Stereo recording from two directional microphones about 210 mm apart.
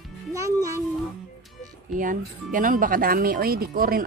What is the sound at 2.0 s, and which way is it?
Speech, 40° right (ahead or behind).